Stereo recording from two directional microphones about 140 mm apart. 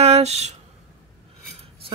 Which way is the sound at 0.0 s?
50° right (ahead or behind).